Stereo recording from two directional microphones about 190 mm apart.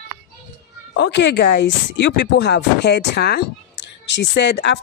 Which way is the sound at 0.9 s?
65° left (ahead or behind).